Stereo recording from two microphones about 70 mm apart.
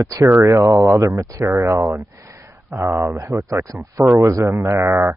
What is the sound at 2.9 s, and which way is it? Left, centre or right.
Speech, right.